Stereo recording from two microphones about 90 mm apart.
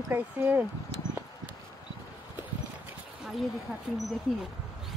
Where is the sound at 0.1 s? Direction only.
20° right (ahead or behind).